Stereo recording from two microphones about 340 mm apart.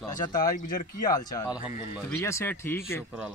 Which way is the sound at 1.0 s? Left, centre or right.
Centre.